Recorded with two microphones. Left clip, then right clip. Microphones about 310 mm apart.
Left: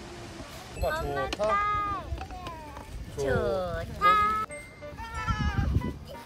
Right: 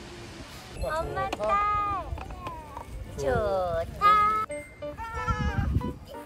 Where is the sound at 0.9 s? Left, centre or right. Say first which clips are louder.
Right 3 dB; right.